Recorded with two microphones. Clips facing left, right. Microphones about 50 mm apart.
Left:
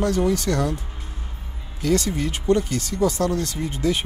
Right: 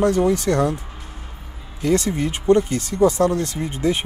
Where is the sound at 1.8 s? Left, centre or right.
Right.